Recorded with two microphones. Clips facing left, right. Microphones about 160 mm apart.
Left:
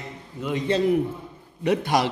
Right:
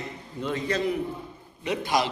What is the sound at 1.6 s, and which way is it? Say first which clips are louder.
Speech: left 4 dB; 60° left (ahead or behind).